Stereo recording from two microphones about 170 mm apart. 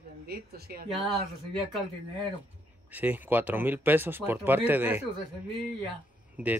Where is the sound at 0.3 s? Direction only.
65° right (ahead or behind).